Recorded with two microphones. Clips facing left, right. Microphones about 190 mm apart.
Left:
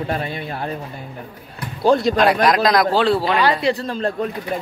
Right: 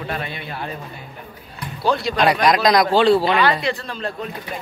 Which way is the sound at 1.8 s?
45° left (ahead or behind).